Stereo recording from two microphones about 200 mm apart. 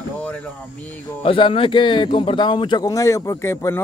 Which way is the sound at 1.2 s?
25° left (ahead or behind).